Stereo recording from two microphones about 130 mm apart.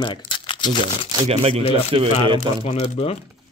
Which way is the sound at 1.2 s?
50° right (ahead or behind).